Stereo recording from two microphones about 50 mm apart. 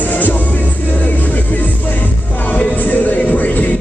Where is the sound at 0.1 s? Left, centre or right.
Left.